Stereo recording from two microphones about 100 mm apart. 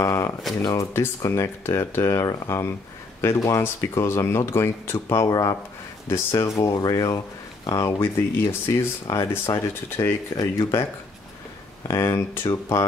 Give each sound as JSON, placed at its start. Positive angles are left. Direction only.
{"t": 0.0, "sound": "a sound", "side_deg": 35}
{"t": 0.7, "sound": "speech", "side_deg": 30}
{"t": 5.3, "sound": "speech", "side_deg": 40}
{"t": 6.0, "sound": "speech", "side_deg": 30}
{"t": 8.0, "sound": "speech", "side_deg": 25}
{"t": 11.9, "sound": "speech", "side_deg": 30}